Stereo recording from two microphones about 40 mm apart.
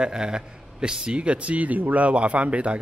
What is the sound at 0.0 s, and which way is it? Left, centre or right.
A man's voice, centre.